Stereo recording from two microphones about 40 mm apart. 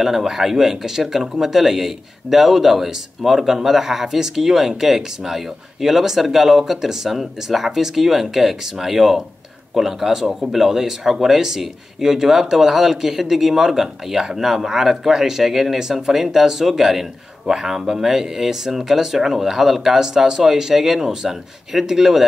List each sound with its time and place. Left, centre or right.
0.0 s speech: centre